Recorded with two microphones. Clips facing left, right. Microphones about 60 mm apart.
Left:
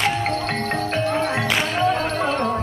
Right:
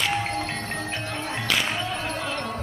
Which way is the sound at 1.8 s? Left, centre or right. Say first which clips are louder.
Left 9 dB; left.